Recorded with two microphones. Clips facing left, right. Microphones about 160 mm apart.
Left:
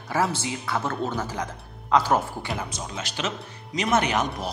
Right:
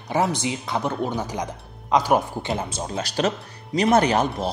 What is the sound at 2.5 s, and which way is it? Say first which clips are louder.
Speech: right 7 dB; 30° right (ahead or behind).